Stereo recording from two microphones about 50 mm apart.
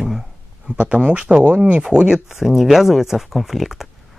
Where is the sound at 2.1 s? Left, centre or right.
Centre.